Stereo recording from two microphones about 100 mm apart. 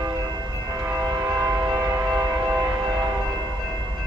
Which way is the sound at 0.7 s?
15° right (ahead or behind).